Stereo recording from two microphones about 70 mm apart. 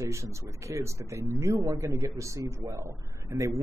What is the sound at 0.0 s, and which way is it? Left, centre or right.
Speech, right.